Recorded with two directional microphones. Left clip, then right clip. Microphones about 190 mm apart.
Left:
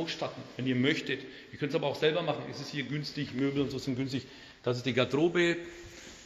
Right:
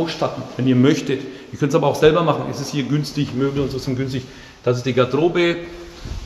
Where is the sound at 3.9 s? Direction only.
25° left (ahead or behind).